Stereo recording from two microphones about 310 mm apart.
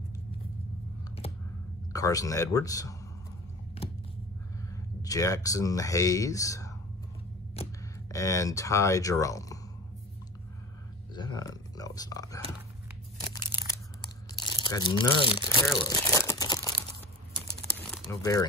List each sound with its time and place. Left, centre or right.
1.9 s speech: centre
4.7 s speech: centre
7.6 s a sound: centre
8.1 s speech: centre
11.1 s speech: centre
14.3 s speech: centre
15.8 s crumpling: centre
17.7 s crumpling: centre